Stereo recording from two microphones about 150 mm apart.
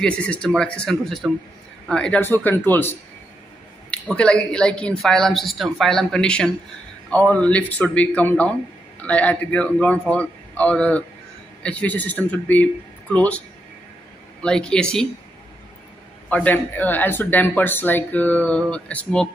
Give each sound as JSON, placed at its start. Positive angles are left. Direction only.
{"t": 0.0, "sound": "speech", "side_deg": 5}
{"t": 14.4, "sound": "speech", "side_deg": 5}
{"t": 16.3, "sound": "speech", "side_deg": 10}